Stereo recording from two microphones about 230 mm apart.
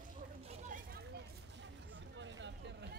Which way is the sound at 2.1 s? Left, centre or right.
Right.